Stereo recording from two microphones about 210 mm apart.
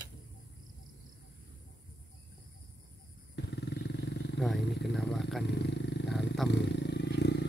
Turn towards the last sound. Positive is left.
turn(degrees=55)  # may be behind; listen again after turning